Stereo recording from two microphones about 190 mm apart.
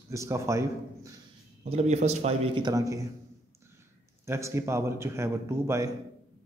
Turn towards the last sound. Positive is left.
turn(degrees=-15)  # may be behind; listen again after turning